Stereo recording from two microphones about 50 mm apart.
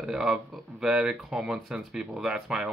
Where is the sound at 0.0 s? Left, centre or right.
Centre.